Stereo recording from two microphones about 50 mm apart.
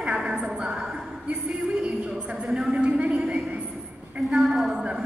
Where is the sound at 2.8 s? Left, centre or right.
Right.